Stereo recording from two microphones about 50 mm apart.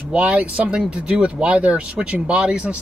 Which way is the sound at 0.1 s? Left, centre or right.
Right.